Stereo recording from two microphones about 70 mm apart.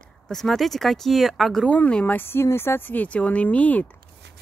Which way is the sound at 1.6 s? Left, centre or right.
Centre.